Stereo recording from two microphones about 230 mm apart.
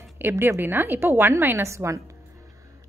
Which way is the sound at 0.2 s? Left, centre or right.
Centre.